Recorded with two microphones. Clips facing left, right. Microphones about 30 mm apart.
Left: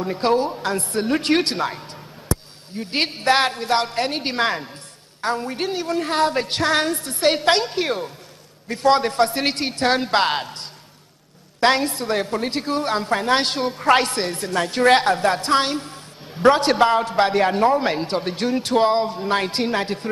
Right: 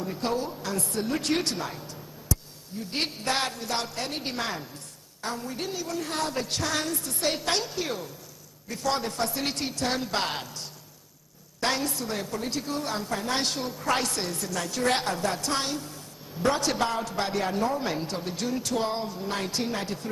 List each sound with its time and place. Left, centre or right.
0.0 s a woman's voice: left